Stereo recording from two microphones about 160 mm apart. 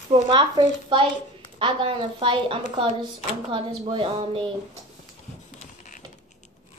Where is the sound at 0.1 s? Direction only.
30° right (ahead or behind).